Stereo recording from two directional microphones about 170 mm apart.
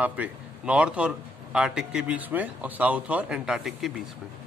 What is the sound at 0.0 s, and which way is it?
A man's voice, 10° right (ahead or behind).